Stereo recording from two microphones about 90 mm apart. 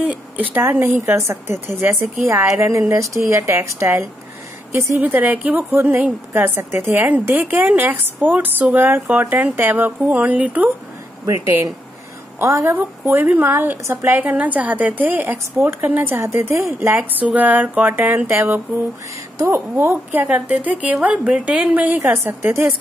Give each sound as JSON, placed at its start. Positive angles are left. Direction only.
{"t": 0.1, "sound": "a woman's voice", "side_deg": -20}
{"t": 5.0, "sound": "a woman's voice", "side_deg": -15}
{"t": 12.4, "sound": "a woman's voice", "side_deg": -30}
{"t": 20.2, "sound": "a woman's voice", "side_deg": -15}